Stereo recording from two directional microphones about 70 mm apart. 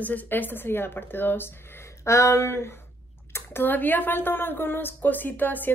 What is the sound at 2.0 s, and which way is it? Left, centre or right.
Speech, left.